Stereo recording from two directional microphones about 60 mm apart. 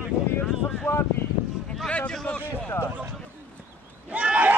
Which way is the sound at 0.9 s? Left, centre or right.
Left.